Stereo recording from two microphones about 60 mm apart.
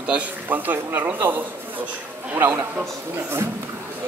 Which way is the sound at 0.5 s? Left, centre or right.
Right.